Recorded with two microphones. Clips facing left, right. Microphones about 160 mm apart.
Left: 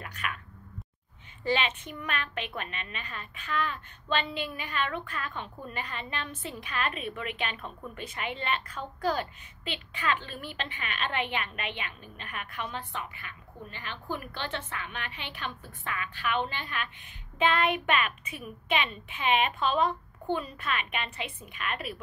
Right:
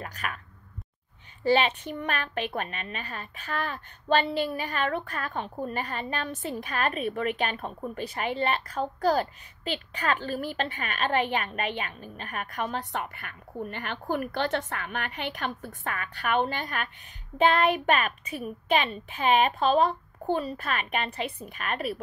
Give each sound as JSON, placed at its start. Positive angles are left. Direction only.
{"t": 0.0, "sound": "a woman's voice", "side_deg": -40}
{"t": 1.4, "sound": "a woman's voice", "side_deg": -35}
{"t": 13.0, "sound": "a woman's voice", "side_deg": -55}